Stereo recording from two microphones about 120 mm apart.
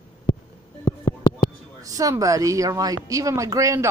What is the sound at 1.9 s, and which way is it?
Speech, 30° right (ahead or behind).